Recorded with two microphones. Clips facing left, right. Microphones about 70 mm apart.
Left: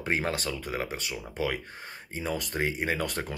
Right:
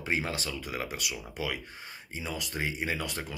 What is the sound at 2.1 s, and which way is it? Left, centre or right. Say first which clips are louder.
A man's voice: left 5 dB; left.